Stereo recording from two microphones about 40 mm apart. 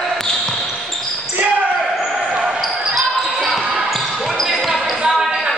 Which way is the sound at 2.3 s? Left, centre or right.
Centre.